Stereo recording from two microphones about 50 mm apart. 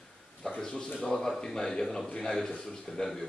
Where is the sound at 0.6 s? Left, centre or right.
Centre.